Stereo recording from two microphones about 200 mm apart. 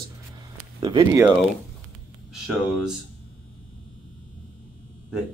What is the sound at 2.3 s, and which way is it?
Speech, centre (ahead or behind).